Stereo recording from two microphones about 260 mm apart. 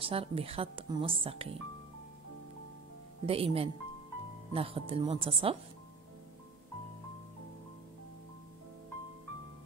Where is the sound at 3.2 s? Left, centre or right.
Right.